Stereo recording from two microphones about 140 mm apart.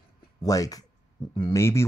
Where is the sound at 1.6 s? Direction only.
20° left (ahead or behind).